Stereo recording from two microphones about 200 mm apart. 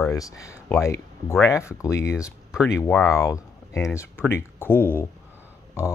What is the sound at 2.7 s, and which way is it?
Speech, 15° left (ahead or behind).